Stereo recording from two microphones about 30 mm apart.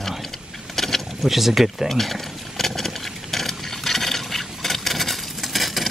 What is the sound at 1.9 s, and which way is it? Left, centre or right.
Vehicle, centre.